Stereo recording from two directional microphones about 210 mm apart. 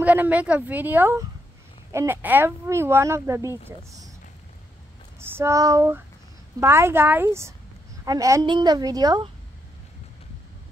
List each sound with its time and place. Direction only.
0.0 s speech: 5° right (ahead or behind)
5.2 s a sound: 10° right (ahead or behind)
6.6 s a woman's voice: 10° right (ahead or behind)